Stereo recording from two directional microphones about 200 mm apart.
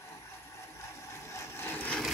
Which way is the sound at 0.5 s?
15° left (ahead or behind).